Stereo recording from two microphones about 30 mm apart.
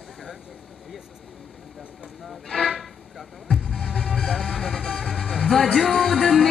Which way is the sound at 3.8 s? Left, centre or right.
Right.